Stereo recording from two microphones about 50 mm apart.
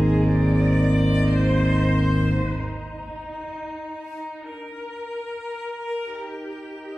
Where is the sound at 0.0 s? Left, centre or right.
Centre.